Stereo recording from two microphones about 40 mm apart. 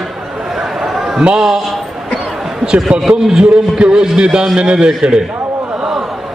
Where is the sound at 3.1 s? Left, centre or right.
Right.